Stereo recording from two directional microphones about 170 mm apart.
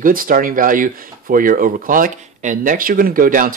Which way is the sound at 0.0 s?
55° right (ahead or behind).